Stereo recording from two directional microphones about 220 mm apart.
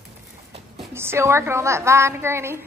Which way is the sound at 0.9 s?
10° right (ahead or behind).